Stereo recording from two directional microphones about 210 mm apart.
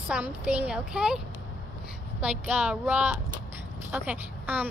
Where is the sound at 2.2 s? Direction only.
5° right (ahead or behind).